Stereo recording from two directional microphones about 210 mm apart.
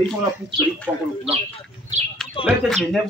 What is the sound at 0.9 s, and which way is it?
Speech, 5° right (ahead or behind).